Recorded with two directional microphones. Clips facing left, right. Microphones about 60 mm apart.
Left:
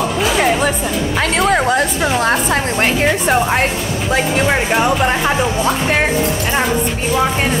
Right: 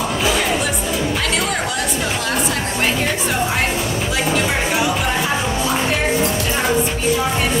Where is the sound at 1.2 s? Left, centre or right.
Left.